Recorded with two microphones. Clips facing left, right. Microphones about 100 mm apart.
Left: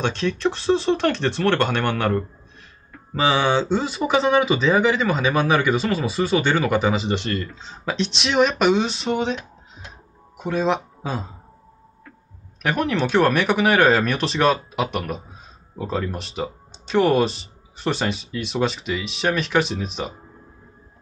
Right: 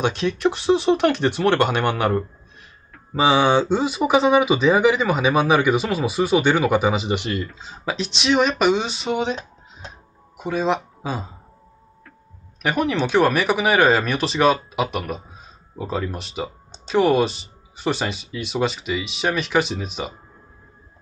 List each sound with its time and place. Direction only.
0.0 s speech: 5° right (ahead or behind)
2.9 s mantra: 5° right (ahead or behind)
3.3 s speech: 15° right (ahead or behind)
9.4 s a sound: 30° right (ahead or behind)
10.3 s speech: centre (ahead or behind)
12.6 s speech: centre (ahead or behind)